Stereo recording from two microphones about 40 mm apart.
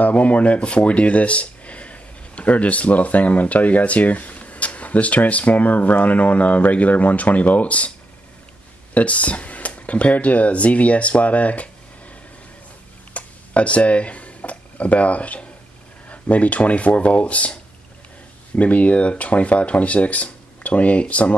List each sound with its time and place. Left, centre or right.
0.0 s speech: left
8.9 s speech: left
13.1 s a sound: left
16.1 s speech: left
18.6 s speech: left